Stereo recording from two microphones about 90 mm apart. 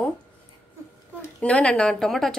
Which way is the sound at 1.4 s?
15° left (ahead or behind).